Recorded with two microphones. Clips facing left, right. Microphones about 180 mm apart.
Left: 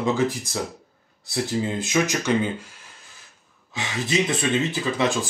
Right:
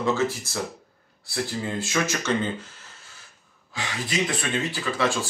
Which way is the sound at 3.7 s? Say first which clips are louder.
Left 5 dB; 20° left (ahead or behind).